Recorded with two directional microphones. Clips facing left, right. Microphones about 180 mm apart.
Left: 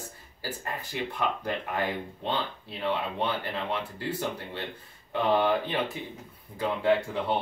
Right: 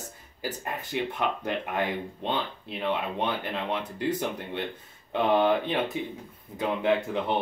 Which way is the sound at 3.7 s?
20° right (ahead or behind).